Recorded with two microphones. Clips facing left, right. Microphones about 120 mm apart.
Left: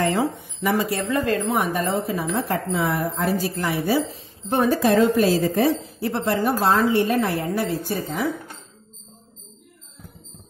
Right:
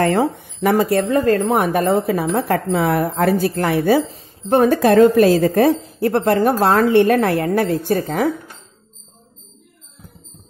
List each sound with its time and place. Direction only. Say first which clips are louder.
0.0 s speech: right 5 dB; 45° right (ahead or behind)
1.6 s speech: right 6 dB; 65° right (ahead or behind)